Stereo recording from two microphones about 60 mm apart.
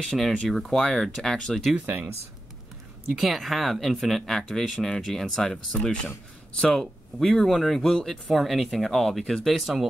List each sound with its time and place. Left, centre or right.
0.0 s speech: centre
3.1 s speech: centre